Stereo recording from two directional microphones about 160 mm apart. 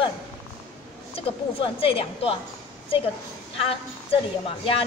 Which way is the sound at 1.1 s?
35° left (ahead or behind).